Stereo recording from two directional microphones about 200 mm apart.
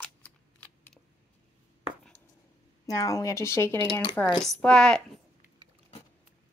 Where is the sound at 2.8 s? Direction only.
15° left (ahead or behind).